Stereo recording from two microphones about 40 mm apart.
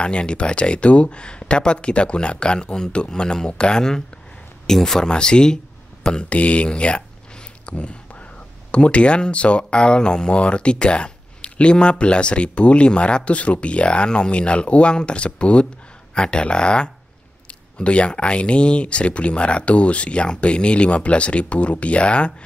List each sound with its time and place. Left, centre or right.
0.0 s speech: left; by 5.0 s centre
5.0 s speech: centre
6.2 s speech: left